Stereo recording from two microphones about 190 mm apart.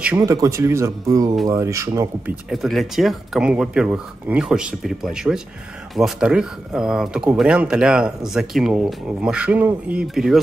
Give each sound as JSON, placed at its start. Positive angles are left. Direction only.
{"t": 0.0, "sound": "speech", "side_deg": -15}
{"t": 2.5, "sound": "speech", "side_deg": 0}